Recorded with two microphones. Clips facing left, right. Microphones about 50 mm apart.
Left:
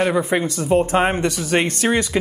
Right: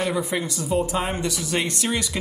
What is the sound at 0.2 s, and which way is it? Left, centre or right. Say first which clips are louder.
Speech: left 6 dB; left.